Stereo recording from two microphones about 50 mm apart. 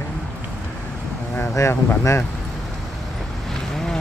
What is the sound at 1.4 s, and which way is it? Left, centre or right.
Speech, left.